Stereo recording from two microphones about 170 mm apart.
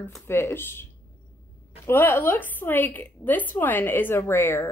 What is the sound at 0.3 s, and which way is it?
Speech, 15° left (ahead or behind).